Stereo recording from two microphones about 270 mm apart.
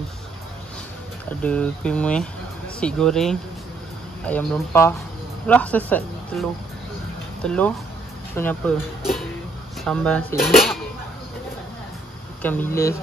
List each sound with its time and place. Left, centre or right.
1.4 s speech: centre
7.4 s speech: centre
12.4 s speech: centre